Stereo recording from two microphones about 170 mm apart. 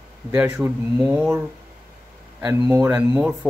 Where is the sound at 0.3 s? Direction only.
15° right (ahead or behind).